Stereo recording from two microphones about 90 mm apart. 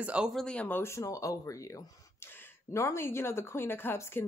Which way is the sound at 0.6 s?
20° left (ahead or behind).